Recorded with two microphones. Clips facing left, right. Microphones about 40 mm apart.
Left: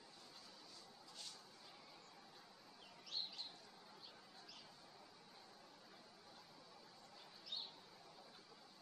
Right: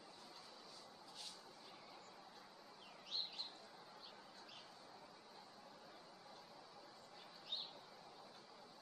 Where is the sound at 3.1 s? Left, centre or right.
Right.